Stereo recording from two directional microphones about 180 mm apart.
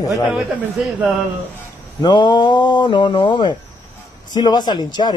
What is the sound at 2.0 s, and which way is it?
Speech, 25° left (ahead or behind).